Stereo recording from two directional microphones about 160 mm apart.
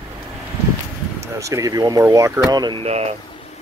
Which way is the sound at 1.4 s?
20° right (ahead or behind).